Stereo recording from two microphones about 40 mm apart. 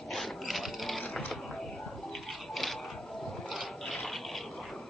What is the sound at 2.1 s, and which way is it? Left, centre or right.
Pigeon, centre.